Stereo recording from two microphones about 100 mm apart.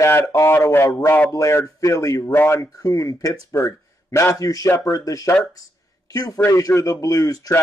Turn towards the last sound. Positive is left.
turn(degrees=40)  # may be behind; listen again after turning